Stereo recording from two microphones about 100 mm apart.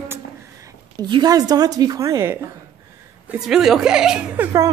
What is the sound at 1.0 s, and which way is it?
Speech, 45° right (ahead or behind).